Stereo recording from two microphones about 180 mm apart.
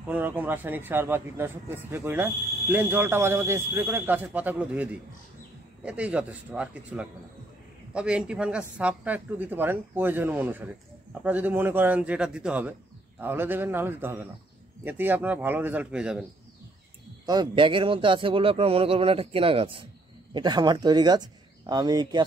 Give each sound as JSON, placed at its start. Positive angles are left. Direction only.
{"t": 0.0, "sound": "speech", "side_deg": -10}
{"t": 5.9, "sound": "speech", "side_deg": -5}
{"t": 17.3, "sound": "a man's voice", "side_deg": -25}